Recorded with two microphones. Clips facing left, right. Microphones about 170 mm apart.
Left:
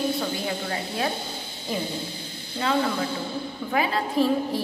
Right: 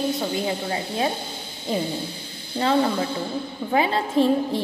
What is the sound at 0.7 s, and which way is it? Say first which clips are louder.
Speech: right 3 dB; 25° right (ahead or behind).